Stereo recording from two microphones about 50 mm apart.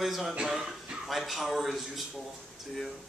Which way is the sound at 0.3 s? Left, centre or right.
Centre.